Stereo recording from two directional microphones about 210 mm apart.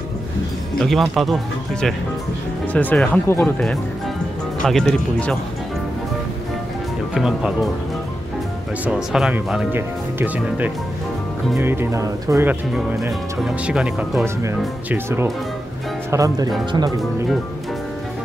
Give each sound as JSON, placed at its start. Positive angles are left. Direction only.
{"t": 0.7, "sound": "speech", "side_deg": 0}
{"t": 7.2, "sound": "speech", "side_deg": 0}
{"t": 8.8, "sound": "speech", "side_deg": -5}